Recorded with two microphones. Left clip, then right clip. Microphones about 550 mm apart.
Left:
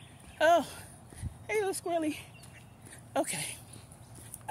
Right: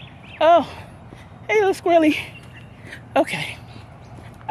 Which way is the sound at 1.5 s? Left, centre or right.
Centre.